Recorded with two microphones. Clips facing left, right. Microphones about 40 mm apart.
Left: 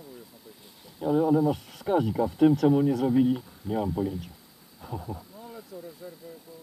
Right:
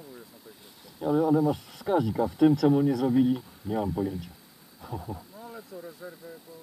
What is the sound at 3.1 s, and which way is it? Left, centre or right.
Speech, centre.